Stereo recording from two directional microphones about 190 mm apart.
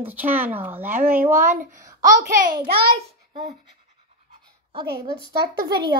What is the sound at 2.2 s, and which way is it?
Speech, 50° right (ahead or behind).